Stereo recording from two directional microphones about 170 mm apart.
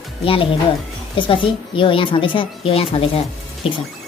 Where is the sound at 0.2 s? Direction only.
30° left (ahead or behind).